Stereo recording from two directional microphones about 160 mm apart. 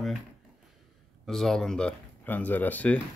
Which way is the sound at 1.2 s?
Centre (ahead or behind).